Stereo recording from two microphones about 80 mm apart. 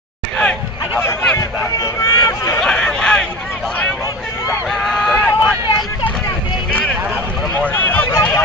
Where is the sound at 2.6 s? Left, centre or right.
Centre.